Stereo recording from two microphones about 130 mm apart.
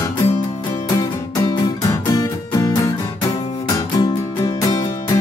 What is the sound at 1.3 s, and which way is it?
Music, 25° left (ahead or behind).